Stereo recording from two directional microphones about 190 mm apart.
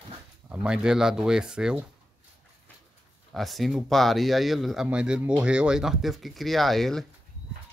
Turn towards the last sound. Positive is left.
turn(degrees=0)  # may be behind; listen again after turning